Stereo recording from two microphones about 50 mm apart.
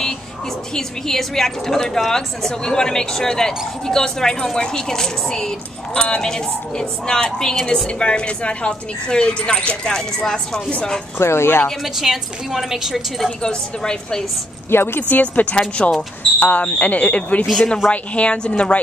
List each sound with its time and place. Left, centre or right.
0.7 s a woman's voice: centre
11.1 s speech: left
11.8 s a woman's voice: centre
13.4 s a woman's voice: centre
14.7 s speech: left
15.0 s speech: left
15.8 s a woman's voice: centre
16.3 s a woman's voice: left